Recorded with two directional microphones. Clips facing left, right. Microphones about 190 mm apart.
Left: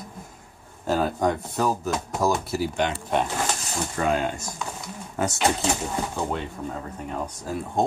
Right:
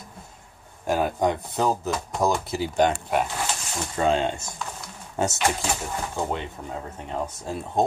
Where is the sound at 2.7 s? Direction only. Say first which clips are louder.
Right 9 dB; 45° right (ahead or behind).